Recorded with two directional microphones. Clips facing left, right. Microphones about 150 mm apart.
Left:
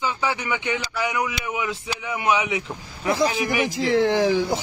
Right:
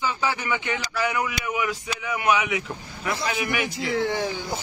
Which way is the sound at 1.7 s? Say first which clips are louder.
Even; 25° left (ahead or behind).